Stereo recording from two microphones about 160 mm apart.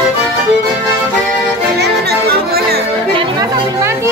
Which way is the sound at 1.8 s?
85° right.